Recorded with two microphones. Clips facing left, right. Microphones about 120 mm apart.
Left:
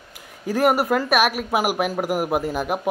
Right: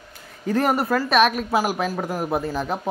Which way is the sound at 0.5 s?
10° left (ahead or behind).